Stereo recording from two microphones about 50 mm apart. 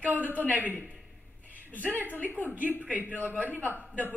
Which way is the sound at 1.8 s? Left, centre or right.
Right.